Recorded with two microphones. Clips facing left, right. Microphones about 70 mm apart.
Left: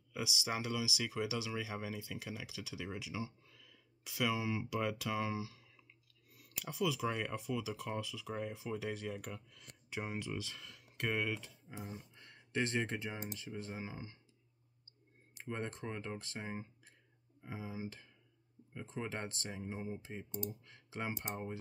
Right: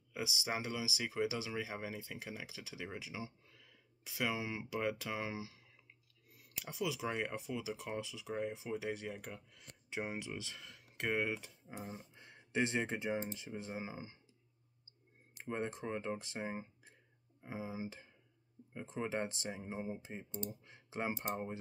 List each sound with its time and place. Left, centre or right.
0.1 s speech: right
15.4 s speech: centre